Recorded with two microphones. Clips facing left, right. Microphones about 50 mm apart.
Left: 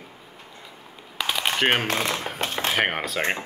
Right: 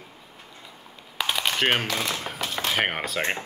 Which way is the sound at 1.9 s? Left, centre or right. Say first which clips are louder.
Left 3 dB; left.